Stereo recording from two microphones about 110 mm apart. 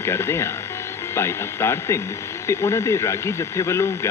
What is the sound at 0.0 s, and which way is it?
Speech, 25° left (ahead or behind).